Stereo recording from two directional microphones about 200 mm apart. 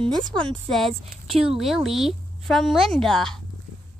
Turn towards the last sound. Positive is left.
turn(degrees=0)  # may be behind; listen again after turning